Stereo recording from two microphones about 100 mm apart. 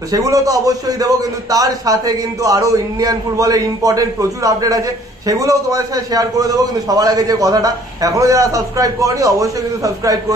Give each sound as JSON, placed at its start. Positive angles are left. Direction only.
{"t": 0.1, "sound": "a man's voice", "side_deg": -35}